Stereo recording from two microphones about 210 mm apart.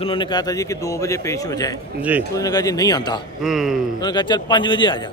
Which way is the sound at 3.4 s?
Centre (ahead or behind).